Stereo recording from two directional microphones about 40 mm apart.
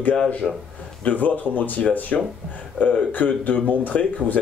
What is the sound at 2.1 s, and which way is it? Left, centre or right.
Speech, left.